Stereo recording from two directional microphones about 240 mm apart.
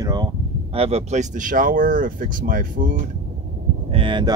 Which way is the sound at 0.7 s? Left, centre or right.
Right.